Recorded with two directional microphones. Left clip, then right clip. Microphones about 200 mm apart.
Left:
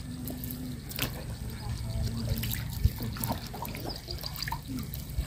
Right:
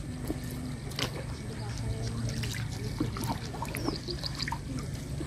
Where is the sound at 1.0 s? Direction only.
15° left (ahead or behind).